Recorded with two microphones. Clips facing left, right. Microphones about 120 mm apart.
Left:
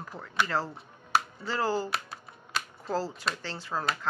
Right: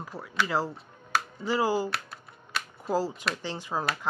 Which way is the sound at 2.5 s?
10° right (ahead or behind).